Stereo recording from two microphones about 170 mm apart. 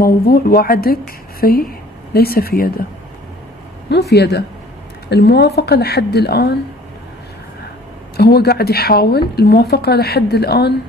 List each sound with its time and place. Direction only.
0.0 s speech: 65° left (ahead or behind)
3.9 s speech: 75° left (ahead or behind)
8.2 s speech: 70° left (ahead or behind)